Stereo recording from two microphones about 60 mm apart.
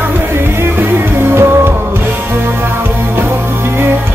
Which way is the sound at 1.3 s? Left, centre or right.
Right.